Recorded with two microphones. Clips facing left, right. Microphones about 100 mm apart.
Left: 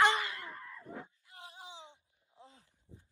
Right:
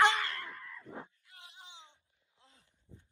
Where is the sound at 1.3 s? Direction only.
20° left (ahead or behind).